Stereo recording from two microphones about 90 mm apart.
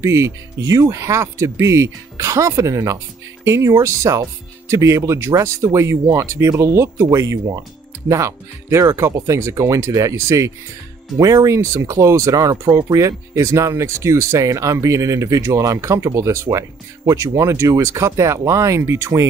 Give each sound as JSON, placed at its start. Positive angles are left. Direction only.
{"t": 0.0, "sound": "speech", "side_deg": -35}
{"t": 12.9, "sound": "speech", "side_deg": -35}